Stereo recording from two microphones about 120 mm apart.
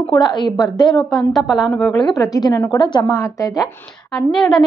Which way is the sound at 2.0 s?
30° left (ahead or behind).